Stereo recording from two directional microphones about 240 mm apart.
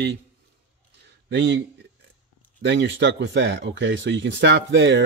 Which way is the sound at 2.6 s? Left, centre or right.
Right.